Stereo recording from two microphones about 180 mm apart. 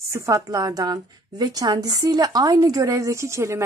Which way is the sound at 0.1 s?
15° right (ahead or behind).